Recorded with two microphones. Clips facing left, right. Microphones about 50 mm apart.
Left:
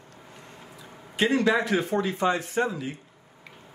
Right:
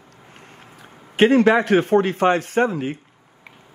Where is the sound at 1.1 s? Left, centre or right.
Right.